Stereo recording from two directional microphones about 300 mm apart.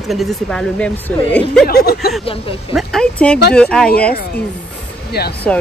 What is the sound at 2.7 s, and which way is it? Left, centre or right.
Speech, centre.